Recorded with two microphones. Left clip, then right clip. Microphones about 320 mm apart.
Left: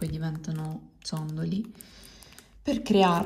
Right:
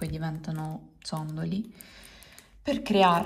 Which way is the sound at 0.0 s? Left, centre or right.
Centre.